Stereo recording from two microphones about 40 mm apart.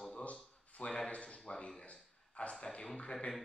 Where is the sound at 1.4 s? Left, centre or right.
Left.